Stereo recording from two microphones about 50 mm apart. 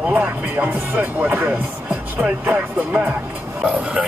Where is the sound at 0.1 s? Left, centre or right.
Right.